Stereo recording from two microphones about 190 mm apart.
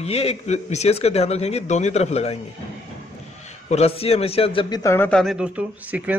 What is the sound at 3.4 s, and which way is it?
A man's voice, 35° left (ahead or behind).